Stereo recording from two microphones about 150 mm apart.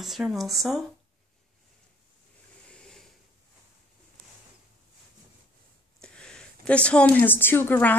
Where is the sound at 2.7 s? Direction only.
5° left (ahead or behind).